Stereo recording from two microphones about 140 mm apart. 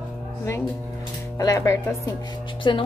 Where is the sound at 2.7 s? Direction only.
35° left (ahead or behind).